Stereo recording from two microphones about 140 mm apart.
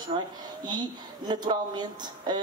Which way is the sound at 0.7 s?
30° right (ahead or behind).